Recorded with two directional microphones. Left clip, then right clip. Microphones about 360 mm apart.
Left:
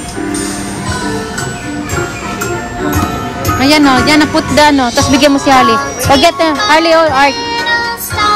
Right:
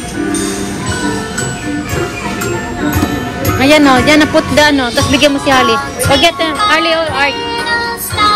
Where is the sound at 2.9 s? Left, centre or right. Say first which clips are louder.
Left 1 dB; centre.